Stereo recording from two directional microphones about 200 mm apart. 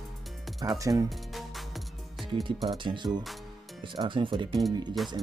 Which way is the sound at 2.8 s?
25° right (ahead or behind).